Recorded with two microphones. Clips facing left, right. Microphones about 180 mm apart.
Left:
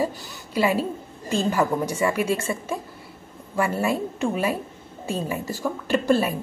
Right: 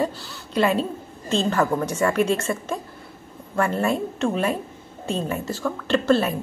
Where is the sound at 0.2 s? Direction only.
15° left (ahead or behind).